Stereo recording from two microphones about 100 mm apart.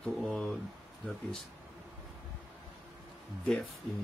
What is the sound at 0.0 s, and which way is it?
Speech, 5° left (ahead or behind).